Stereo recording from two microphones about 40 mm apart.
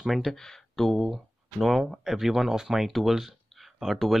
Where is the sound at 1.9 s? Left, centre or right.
Centre.